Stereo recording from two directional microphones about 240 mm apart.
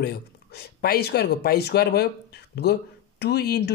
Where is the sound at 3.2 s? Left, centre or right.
Left.